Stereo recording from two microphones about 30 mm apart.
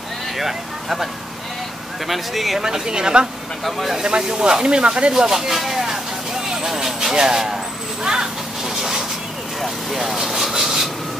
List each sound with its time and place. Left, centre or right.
0.4 s speech: centre
2.0 s speech: centre
2.6 s speech: right
3.6 s speech: centre
4.0 s speech: right
5.1 s speech: centre
6.5 s speech: centre
8.0 s a sound: right
10.1 s speech: centre
10.5 s rub: centre